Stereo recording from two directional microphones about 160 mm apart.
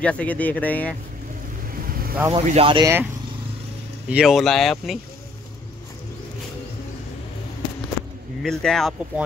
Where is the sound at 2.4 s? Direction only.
45° right (ahead or behind).